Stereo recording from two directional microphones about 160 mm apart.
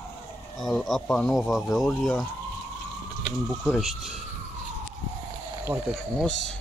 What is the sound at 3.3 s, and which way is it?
Speech, 5° right (ahead or behind).